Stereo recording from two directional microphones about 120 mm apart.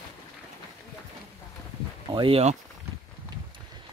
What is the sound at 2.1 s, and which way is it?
Speech, 45° right (ahead or behind).